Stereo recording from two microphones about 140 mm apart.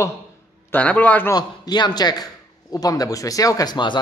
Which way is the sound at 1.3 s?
30° left (ahead or behind).